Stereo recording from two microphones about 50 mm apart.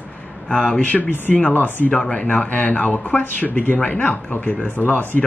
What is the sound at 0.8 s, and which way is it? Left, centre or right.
A man's voice, left.